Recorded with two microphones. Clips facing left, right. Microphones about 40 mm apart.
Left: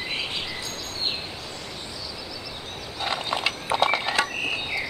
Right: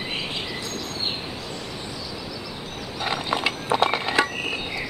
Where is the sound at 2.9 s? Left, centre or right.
Centre.